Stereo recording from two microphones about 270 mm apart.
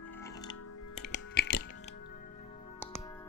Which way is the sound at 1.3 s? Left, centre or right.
Left.